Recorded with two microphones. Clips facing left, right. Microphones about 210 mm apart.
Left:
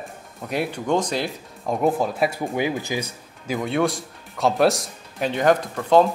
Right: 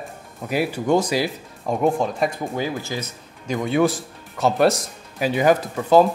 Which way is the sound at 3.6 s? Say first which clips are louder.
Right 3 dB; centre (ahead or behind).